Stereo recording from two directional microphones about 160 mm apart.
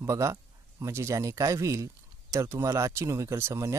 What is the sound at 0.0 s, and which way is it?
Speech, 20° right (ahead or behind).